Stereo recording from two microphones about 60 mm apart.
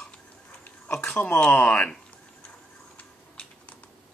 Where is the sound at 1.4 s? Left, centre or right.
Left.